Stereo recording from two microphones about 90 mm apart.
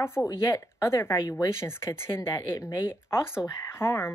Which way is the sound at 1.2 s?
50° left (ahead or behind).